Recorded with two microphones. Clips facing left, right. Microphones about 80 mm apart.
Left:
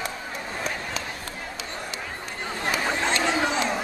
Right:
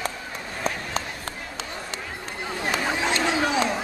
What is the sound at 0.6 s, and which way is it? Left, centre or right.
Run, right.